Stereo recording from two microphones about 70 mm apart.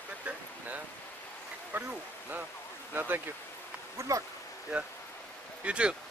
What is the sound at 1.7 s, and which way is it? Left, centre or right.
Speech, right.